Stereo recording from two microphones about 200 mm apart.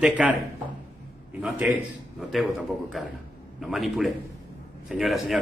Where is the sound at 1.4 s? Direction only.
5° right (ahead or behind).